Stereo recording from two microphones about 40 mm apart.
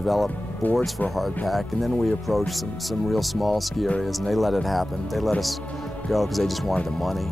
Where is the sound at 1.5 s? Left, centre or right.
Centre.